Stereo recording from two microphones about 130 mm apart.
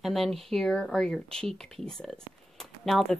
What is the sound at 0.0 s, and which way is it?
Speech, centre (ahead or behind).